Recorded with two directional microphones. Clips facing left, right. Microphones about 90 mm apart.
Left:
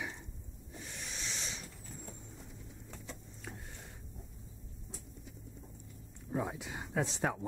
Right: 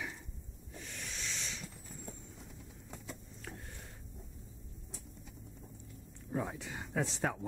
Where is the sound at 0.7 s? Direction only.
15° left (ahead or behind).